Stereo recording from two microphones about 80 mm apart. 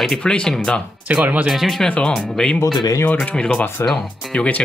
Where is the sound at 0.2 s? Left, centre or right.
Centre.